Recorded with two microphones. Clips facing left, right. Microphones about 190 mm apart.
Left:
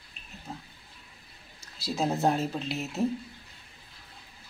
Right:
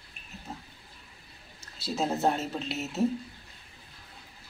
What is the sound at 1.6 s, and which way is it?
A woman's voice, centre (ahead or behind).